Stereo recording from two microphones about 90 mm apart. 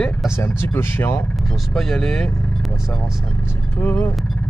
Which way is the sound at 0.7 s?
25° left (ahead or behind).